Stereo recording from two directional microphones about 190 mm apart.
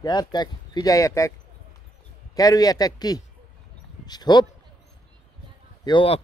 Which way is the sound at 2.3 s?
20° left (ahead or behind).